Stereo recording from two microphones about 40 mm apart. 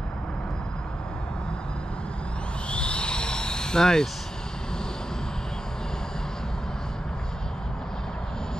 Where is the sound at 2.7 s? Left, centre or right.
Left.